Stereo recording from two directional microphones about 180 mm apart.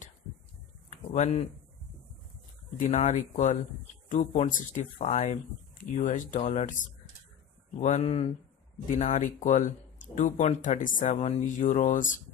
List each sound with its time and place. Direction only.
0.8 s a sound: 40° left (ahead or behind)
2.8 s speech: 40° left (ahead or behind)
7.8 s speech: 40° left (ahead or behind)